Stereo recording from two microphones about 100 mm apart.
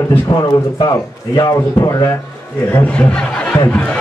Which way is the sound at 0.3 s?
45° left (ahead or behind).